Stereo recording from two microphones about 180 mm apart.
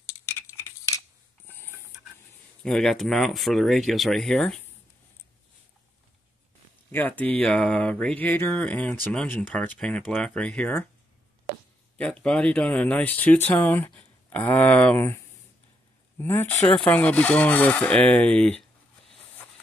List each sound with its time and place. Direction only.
0.3 s a sound: 15° left (ahead or behind)
2.6 s speech: 5° left (ahead or behind)
6.9 s speech: 10° left (ahead or behind)
12.0 s speech: 5° left (ahead or behind)
16.2 s speech: 15° left (ahead or behind)